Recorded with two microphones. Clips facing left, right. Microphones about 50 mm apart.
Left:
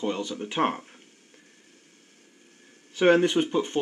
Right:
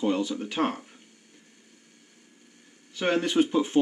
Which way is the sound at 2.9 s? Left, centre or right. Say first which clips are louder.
Left 6 dB; left.